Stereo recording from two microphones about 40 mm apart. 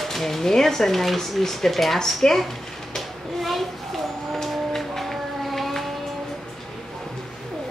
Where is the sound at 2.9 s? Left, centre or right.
Centre.